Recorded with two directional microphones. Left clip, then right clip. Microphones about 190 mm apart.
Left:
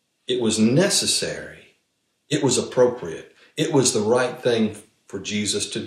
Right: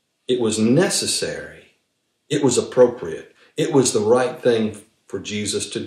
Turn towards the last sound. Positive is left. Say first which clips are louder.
# even
turn(degrees=-15)  # may be behind; listen again after turning